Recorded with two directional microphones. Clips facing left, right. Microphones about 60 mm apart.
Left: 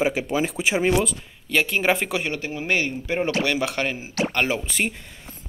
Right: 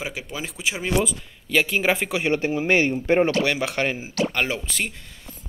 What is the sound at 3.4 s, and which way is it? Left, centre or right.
Speech, centre.